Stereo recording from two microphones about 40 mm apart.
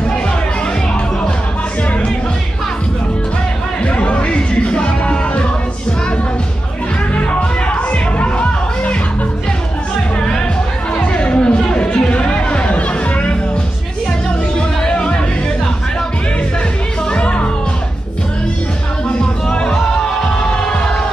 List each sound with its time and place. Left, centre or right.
3.8 s music: left
7.7 s music: left
11.0 s chatter: left
11.5 s music: left
14.9 s music: left
17.1 s music: left
19.0 s music: left